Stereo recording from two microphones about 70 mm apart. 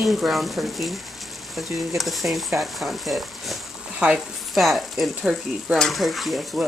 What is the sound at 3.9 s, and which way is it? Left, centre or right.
Speech, centre.